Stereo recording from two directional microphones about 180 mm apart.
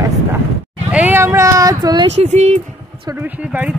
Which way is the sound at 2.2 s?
40° right (ahead or behind).